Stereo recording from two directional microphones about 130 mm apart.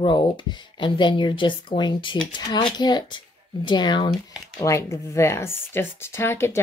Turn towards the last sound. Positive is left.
turn(degrees=20)  # may be behind; listen again after turning